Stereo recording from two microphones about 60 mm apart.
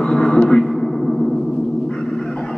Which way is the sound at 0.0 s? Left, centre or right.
Centre.